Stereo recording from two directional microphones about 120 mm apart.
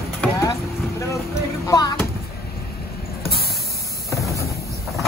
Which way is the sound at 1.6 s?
30° left (ahead or behind).